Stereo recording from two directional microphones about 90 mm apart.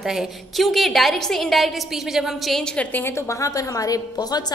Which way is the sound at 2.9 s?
25° left (ahead or behind).